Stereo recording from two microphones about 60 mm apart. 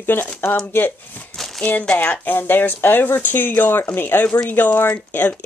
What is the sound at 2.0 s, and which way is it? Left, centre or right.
A woman's voice, left.